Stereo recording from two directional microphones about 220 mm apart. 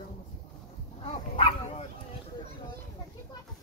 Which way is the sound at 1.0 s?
25° left (ahead or behind).